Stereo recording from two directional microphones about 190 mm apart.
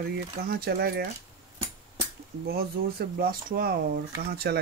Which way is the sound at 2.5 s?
55° right (ahead or behind).